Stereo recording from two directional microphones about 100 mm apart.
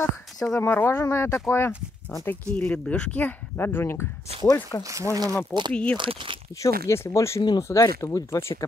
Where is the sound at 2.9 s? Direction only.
15° left (ahead or behind).